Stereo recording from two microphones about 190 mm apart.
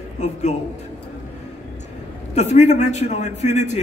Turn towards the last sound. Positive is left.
turn(degrees=35)  # may be behind; listen again after turning